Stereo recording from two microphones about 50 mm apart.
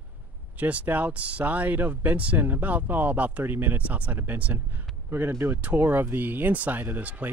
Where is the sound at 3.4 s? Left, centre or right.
Right.